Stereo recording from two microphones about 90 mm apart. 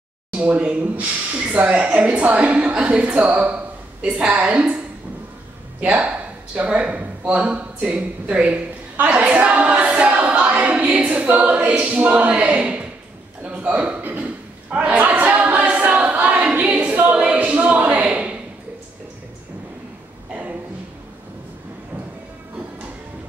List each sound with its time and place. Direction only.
0.3 s speech: 15° right (ahead or behind)
13.4 s chuckle: 15° right (ahead or behind)